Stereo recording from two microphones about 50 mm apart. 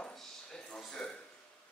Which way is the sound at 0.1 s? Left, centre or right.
Centre.